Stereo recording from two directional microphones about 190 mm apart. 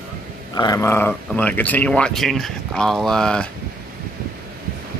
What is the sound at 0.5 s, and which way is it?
Speech, 20° left (ahead or behind).